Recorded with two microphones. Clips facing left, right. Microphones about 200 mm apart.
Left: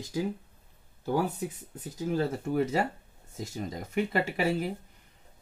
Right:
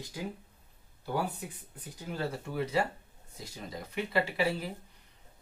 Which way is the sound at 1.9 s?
45° left (ahead or behind).